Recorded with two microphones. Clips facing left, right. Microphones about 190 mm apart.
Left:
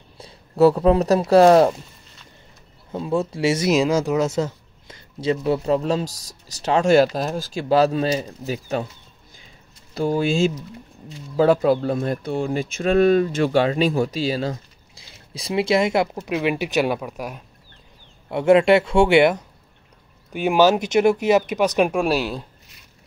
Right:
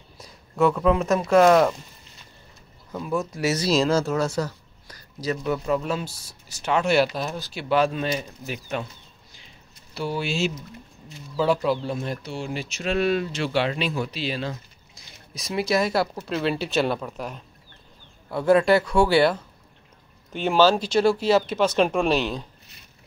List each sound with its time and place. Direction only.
0.2 s speech: 30° left (ahead or behind)
2.9 s speech: 25° left (ahead or behind)
9.9 s speech: 45° left (ahead or behind)
11.3 s speech: 55° left (ahead or behind)
15.3 s speech: 30° left (ahead or behind); by 17.4 s 10° left (ahead or behind)
18.3 s speech: 20° left (ahead or behind); by 22.5 s 5° left (ahead or behind)